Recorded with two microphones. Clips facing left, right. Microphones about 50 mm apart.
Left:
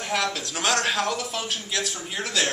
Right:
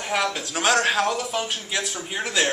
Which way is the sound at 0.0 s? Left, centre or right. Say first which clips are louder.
Right 2 dB; centre.